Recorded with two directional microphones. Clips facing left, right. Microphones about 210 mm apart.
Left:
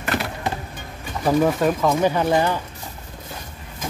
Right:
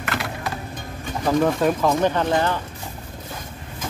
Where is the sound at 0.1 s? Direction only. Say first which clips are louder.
Left 4 dB; 15° left (ahead or behind).